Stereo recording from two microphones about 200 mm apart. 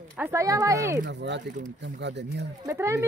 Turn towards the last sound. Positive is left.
turn(degrees=-15)  # may be behind; listen again after turning